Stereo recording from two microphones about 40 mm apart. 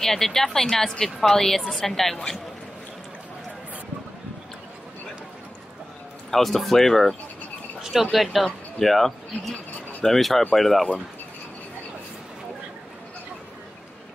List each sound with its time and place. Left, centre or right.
0.0 s speech: centre
2.1 s speech: centre
6.3 s speech: centre
7.8 s speech: centre